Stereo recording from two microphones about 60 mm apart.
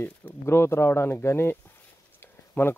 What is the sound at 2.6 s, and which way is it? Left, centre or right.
Speech, left.